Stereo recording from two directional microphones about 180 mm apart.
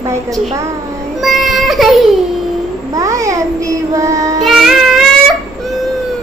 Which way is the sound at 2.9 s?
20° right (ahead or behind).